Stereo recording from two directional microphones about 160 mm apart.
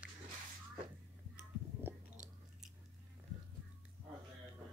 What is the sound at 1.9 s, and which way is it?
Chewing, 15° right (ahead or behind).